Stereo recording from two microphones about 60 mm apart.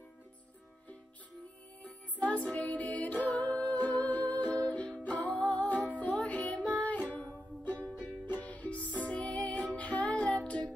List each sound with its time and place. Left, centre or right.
1.8 s music: left